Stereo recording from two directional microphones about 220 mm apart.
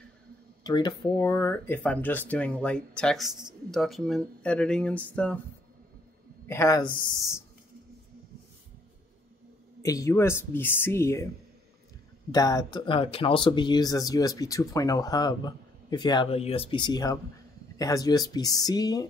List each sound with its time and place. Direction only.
0.7 s speech: 20° left (ahead or behind)
6.4 s a man's voice: 10° left (ahead or behind)
9.8 s speech: 15° left (ahead or behind)
12.3 s speech: 15° left (ahead or behind)